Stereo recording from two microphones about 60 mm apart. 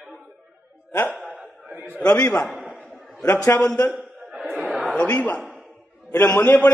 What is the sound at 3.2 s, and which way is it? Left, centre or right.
Speech, left.